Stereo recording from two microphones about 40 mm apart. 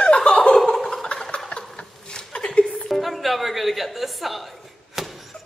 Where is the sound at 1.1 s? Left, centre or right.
Left.